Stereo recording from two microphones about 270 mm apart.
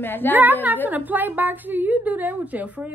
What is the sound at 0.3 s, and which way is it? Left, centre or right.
A woman's voice, centre.